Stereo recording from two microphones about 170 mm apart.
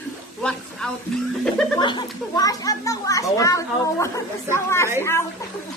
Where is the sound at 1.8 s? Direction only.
25° left (ahead or behind).